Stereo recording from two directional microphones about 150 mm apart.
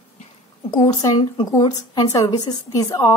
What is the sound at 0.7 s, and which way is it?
Speech, 25° left (ahead or behind).